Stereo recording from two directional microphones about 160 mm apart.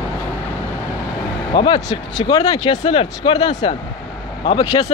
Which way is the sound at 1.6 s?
25° left (ahead or behind).